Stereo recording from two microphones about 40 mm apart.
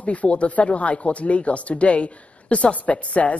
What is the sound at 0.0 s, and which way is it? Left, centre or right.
A woman's voice, left.